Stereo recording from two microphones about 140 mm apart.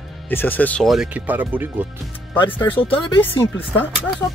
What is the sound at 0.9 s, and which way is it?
Speech, 5° right (ahead or behind).